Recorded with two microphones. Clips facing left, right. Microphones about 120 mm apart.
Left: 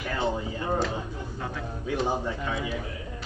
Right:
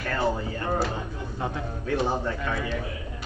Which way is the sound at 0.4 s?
15° left (ahead or behind).